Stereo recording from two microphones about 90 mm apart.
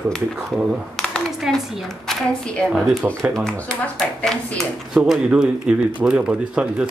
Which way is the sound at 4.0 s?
5° left (ahead or behind).